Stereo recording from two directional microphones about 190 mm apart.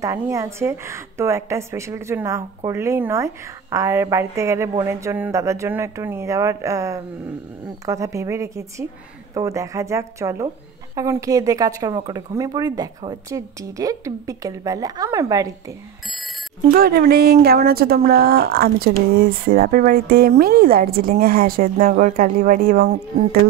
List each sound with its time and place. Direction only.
0.0 s speech: 15° right (ahead or behind)
16.7 s speech: 55° right (ahead or behind)